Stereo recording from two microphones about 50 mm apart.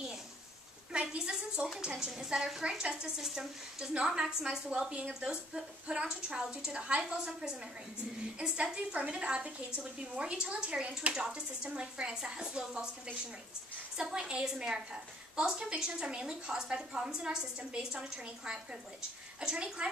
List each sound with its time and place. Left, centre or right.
0.9 s a woman's voice: centre
8.7 s speech: right
13.9 s a woman's voice: centre